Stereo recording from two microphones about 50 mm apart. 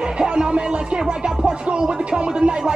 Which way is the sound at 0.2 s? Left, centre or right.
Centre.